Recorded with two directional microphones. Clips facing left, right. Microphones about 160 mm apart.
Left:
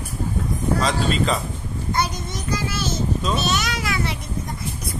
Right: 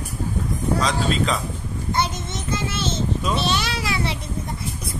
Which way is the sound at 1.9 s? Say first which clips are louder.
Even; 25° right (ahead or behind).